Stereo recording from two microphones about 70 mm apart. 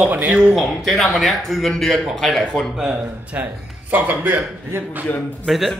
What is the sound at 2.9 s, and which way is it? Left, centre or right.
A man's voice, right.